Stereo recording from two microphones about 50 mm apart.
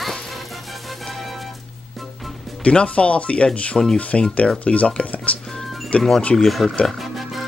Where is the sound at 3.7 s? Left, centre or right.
Centre.